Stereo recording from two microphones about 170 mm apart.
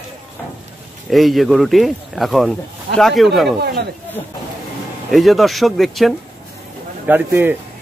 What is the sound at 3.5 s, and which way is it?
Speech, 70° right (ahead or behind).